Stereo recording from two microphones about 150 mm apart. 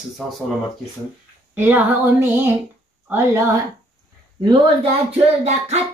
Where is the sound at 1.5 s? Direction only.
15° right (ahead or behind).